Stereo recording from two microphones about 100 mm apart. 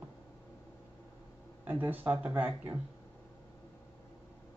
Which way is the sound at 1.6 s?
20° right (ahead or behind).